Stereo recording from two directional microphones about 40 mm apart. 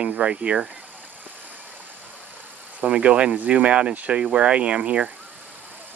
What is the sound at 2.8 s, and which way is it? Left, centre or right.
Speech, right.